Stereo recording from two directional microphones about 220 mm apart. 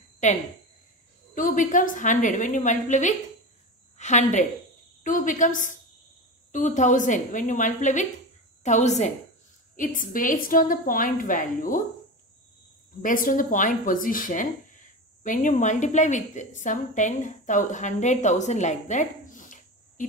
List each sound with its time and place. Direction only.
0.2 s a woman's voice: 35° left (ahead or behind)
13.0 s speech: 40° left (ahead or behind)